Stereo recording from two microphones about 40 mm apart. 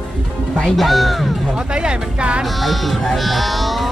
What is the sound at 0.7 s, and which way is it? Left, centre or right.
Speech, centre.